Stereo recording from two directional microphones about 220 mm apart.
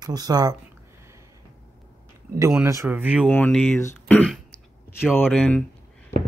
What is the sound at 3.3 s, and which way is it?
Speech, 5° left (ahead or behind).